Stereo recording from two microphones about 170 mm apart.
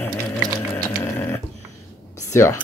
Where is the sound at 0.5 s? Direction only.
20° left (ahead or behind).